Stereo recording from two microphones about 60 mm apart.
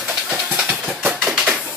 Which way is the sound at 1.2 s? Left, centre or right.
Centre.